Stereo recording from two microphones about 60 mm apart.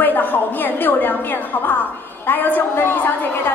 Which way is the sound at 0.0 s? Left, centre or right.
Left.